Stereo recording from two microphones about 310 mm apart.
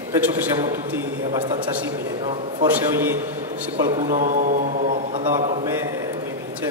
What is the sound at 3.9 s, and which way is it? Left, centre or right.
A man's voice, right.